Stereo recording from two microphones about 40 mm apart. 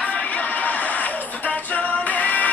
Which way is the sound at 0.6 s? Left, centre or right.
Left.